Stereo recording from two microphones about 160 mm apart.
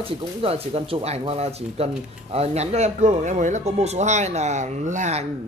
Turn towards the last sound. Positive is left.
turn(degrees=-45)  # may be behind; listen again after turning